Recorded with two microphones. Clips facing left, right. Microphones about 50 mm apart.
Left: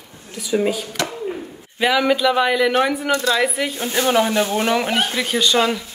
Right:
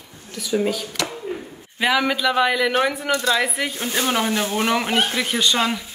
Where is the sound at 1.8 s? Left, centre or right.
Centre.